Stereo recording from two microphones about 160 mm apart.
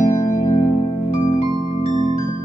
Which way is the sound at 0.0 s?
55° left (ahead or behind).